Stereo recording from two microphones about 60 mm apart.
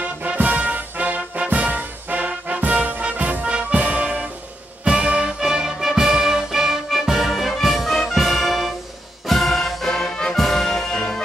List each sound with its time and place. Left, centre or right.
0.0 s music: right; by 10.1 s centre
10.3 s brass instrument: centre